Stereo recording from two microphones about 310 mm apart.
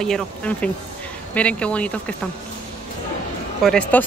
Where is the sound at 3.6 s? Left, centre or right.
Centre.